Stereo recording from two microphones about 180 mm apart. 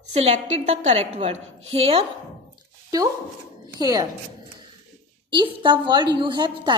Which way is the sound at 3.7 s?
20° right (ahead or behind).